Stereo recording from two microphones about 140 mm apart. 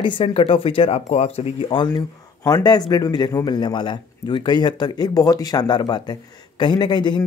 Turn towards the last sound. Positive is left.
turn(degrees=30)  # may be behind; listen again after turning